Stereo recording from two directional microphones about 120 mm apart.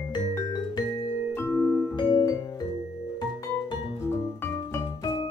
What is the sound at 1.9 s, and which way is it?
Music, 35° left (ahead or behind).